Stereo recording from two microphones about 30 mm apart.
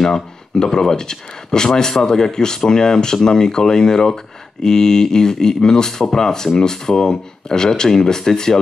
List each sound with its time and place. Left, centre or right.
0.0 s speech: centre